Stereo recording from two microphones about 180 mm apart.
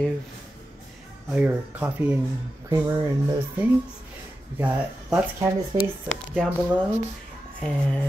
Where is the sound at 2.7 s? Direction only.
20° right (ahead or behind).